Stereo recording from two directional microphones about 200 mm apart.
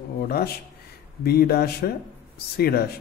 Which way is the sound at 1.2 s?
50° left (ahead or behind).